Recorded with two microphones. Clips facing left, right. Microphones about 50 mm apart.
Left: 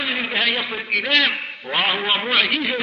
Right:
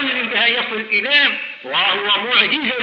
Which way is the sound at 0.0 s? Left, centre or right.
Centre.